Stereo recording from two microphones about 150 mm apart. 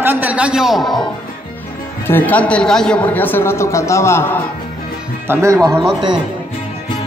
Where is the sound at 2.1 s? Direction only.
10° left (ahead or behind).